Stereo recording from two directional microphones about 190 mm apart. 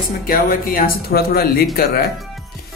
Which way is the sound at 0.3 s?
45° left (ahead or behind).